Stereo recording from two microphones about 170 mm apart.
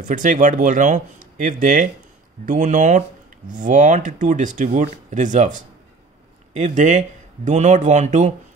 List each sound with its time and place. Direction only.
0.0 s speech: 50° right (ahead or behind)
6.5 s speech: 45° right (ahead or behind)